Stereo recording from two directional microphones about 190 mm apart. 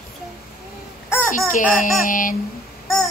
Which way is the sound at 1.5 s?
45° left (ahead or behind).